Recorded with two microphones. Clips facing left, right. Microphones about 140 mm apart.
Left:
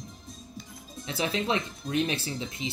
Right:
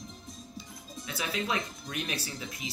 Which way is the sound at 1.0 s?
30° left (ahead or behind).